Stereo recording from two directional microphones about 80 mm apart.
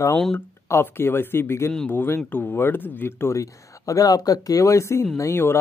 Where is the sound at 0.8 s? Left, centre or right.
Left.